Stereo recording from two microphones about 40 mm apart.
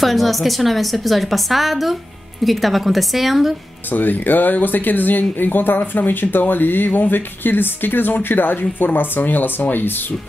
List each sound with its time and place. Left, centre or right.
0.0 s a woman's voice: centre
3.9 s speech: left